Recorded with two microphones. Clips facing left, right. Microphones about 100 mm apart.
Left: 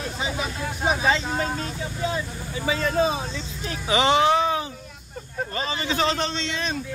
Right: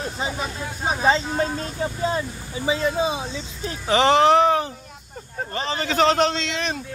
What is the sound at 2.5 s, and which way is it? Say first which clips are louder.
Speech: right 1 dB; 20° right (ahead or behind).